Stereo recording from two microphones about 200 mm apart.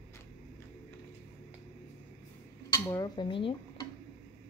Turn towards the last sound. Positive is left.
turn(degrees=25)  # may be behind; listen again after turning